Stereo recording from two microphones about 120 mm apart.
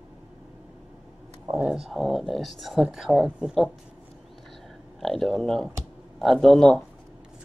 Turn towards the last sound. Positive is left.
turn(degrees=5)  # may be behind; listen again after turning